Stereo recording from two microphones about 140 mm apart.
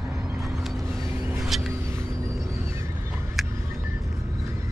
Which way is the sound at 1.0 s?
15° right (ahead or behind).